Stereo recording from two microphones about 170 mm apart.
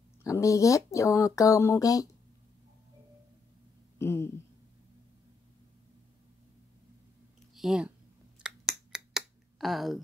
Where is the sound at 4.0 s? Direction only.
15° left (ahead or behind).